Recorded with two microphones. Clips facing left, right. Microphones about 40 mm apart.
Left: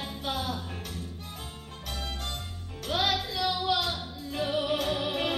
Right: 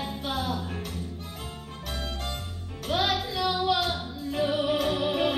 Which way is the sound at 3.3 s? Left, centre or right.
Centre.